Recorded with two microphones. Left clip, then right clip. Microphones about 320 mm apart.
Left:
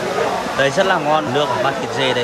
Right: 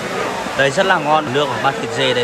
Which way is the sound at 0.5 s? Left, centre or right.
Centre.